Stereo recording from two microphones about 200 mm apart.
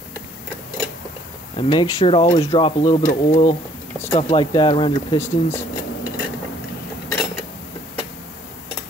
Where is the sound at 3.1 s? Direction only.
35° left (ahead or behind).